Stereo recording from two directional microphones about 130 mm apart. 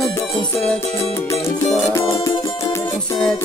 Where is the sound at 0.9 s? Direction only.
20° left (ahead or behind).